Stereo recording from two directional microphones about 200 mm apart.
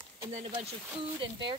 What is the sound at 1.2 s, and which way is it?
Speech, 25° right (ahead or behind).